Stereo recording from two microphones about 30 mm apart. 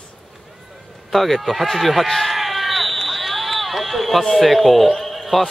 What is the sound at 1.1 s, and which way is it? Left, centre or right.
Speech, centre.